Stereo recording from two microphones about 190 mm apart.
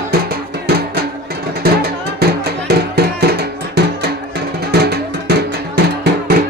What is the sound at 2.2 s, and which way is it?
Music, 60° right (ahead or behind).